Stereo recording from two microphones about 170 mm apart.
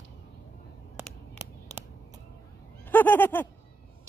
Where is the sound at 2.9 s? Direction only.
10° left (ahead or behind).